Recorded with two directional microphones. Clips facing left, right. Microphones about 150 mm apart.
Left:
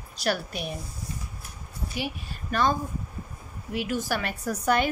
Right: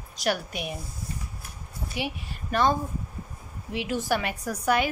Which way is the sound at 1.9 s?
25° right (ahead or behind).